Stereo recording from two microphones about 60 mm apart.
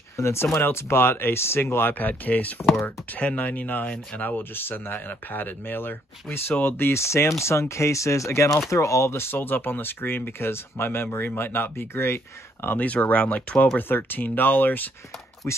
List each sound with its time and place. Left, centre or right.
0.2 s speech: left
12.7 s speech: left
13.7 s speech: left